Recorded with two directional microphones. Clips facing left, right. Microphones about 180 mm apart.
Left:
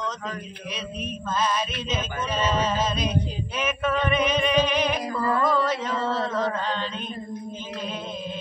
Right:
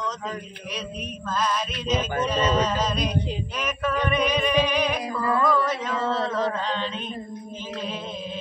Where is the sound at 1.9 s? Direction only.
40° right (ahead or behind).